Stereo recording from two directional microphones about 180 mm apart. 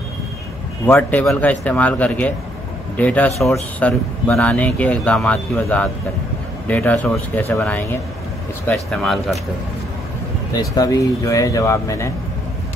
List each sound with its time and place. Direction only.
0.8 s speech: 15° left (ahead or behind)
10.5 s speech: 20° left (ahead or behind)